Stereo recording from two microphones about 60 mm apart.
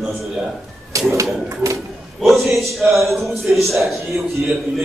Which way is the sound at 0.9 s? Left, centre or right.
Right.